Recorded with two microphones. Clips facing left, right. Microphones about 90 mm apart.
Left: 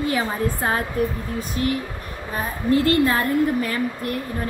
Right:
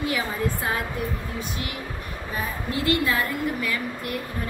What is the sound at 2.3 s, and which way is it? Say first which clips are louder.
A woman's voice: left 9 dB; 40° left (ahead or behind).